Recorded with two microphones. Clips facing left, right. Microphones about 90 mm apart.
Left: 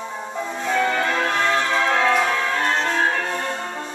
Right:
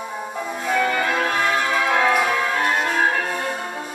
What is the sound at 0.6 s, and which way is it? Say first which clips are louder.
Change ringing: even; 10° right (ahead or behind).